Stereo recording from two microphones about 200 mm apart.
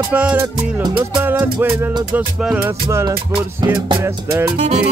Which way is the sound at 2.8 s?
15° right (ahead or behind).